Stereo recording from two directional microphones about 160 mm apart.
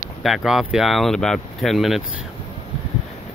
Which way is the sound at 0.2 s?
Centre (ahead or behind).